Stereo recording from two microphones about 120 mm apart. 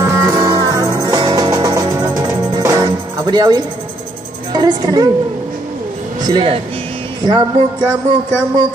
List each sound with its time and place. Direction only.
0.0 s music: 20° right (ahead or behind)
4.5 s a woman's voice: 35° right (ahead or behind)
6.2 s speech: 35° right (ahead or behind)